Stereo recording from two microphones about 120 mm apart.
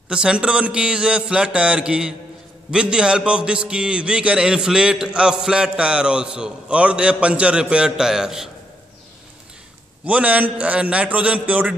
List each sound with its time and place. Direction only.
0.1 s a man's voice: 10° right (ahead or behind)
10.0 s a man's voice: 10° right (ahead or behind)